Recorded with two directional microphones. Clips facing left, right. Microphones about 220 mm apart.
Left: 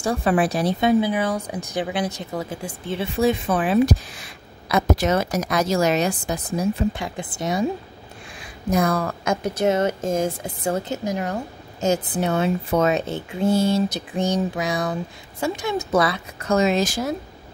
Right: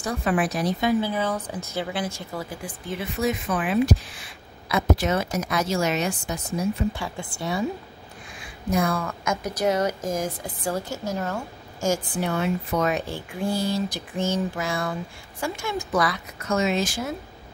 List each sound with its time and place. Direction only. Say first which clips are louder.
0.0 s speech: left 4 dB; 30° left (ahead or behind)
1.0 s speech: left 3 dB; 15° left (ahead or behind); by 6.7 s 35° left (ahead or behind)
6.9 s speech: left 3 dB; 20° left (ahead or behind)
8.7 s speech: left 3 dB; 40° left (ahead or behind)